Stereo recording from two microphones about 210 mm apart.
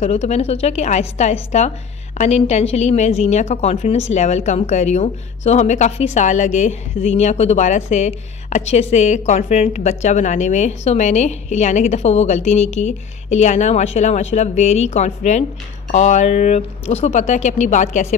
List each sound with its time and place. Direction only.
0.0 s speech: 30° left (ahead or behind)